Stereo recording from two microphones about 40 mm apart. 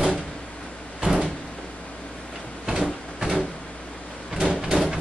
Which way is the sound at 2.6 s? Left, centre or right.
Centre.